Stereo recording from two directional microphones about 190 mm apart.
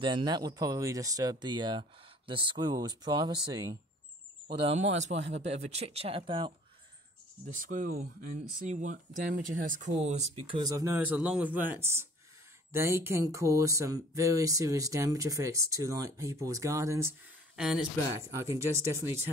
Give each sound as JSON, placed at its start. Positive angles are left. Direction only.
{"t": 0.0, "sound": "speech", "side_deg": -25}
{"t": 7.4, "sound": "speech", "side_deg": -45}
{"t": 17.6, "sound": "speech", "side_deg": 0}
{"t": 18.1, "sound": "speech", "side_deg": -15}